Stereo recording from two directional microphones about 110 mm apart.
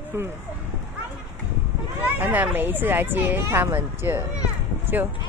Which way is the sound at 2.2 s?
15° right (ahead or behind).